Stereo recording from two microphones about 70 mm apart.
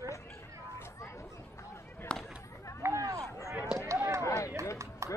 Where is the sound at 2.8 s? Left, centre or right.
Right.